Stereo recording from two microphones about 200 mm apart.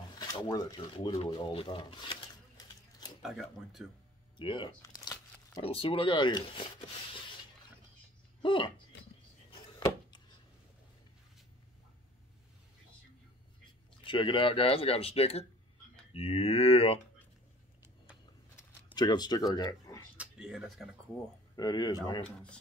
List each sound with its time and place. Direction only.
0.1 s a sound: 20° left (ahead or behind)
3.2 s speech: centre (ahead or behind)
4.4 s crumpling: 25° left (ahead or behind)
5.6 s speech: 30° left (ahead or behind)
8.4 s speech: 25° left (ahead or behind)
9.5 s a sound: 25° left (ahead or behind)
14.0 s speech: 25° left (ahead or behind)
18.9 s speech: 20° left (ahead or behind)
20.2 s speech: 5° right (ahead or behind)
21.5 s speech: 20° left (ahead or behind)